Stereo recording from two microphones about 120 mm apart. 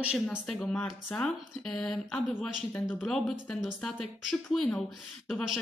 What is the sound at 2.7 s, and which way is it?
Speech, 20° left (ahead or behind).